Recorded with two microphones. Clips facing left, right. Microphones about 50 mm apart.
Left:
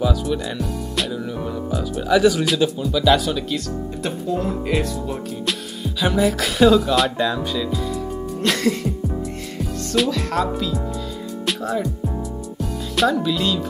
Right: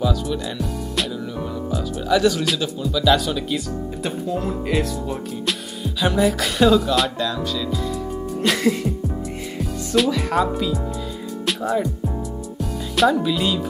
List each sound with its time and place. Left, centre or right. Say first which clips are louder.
0.0 s speech: left 1 dB; centre
5.5 s music: even; centre
7.2 s music: left 2 dB; centre
8.4 s music: right 1 dB; centre
9.6 s speech: right 1 dB; centre
11.4 s music: right 1 dB; centre